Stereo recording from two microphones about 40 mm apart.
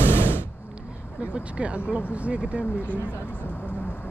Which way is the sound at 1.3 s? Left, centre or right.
Right.